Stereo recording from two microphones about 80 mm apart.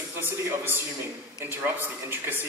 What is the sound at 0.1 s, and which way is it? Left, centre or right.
A man's voice, right.